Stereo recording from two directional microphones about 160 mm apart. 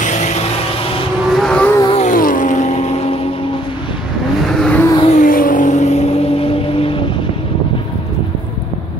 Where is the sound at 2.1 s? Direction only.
60° left (ahead or behind); by 3.5 s 35° left (ahead or behind).